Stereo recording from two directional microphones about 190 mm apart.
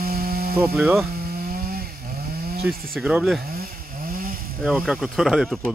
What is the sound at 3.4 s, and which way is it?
Chainsaw, 50° right (ahead or behind).